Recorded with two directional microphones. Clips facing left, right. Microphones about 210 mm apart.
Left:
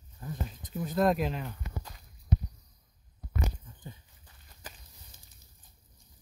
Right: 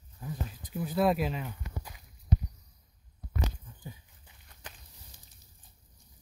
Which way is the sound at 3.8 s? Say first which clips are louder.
Right 1 dB; 10° right (ahead or behind).